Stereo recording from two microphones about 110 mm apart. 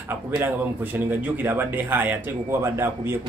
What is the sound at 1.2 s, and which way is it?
A man's voice, 20° right (ahead or behind).